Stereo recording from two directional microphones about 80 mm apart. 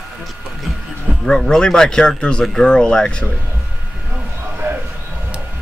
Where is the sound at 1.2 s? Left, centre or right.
Centre.